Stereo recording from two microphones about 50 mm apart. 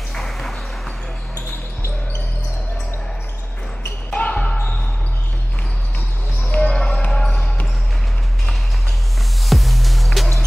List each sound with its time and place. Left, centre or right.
0.1 s a sound: centre
4.2 s basketball bounce: left
6.4 s basketball bounce: left
9.5 s music: centre